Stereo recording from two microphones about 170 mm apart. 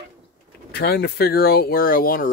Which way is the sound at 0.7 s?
70° left (ahead or behind).